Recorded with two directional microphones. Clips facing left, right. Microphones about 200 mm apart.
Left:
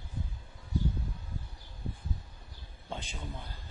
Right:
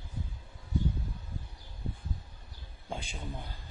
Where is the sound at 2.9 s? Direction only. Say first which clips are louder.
Right 1 dB; 10° right (ahead or behind).